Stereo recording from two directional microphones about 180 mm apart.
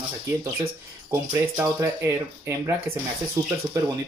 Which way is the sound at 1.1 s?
15° right (ahead or behind).